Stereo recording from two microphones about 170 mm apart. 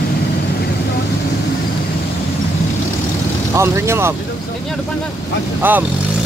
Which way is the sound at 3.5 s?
15° right (ahead or behind).